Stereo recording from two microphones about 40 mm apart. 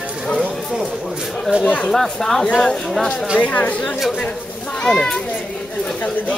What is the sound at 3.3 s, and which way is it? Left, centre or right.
Speech, left.